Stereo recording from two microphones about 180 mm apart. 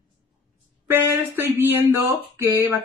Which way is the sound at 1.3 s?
10° right (ahead or behind).